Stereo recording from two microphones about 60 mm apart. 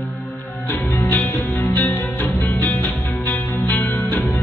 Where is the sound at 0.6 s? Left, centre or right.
Left.